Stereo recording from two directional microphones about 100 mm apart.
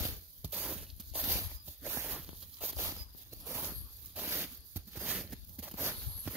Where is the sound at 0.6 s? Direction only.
5° right (ahead or behind).